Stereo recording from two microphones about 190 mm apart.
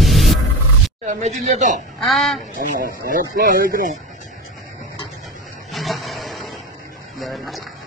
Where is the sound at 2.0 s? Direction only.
Centre (ahead or behind).